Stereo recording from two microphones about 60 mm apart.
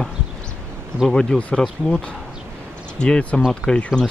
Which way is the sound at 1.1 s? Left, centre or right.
Centre.